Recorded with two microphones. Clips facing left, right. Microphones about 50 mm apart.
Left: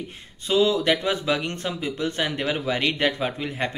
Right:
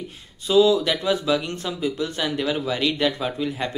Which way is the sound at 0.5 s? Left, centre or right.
Left.